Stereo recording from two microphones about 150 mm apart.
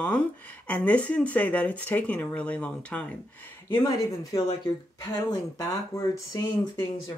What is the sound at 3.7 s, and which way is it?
Speech, 20° left (ahead or behind).